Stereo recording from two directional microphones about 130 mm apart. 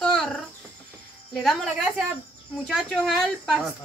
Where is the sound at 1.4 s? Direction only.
Centre (ahead or behind).